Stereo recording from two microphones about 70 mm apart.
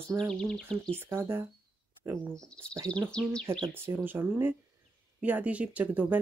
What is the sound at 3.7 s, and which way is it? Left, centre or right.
Speech, right.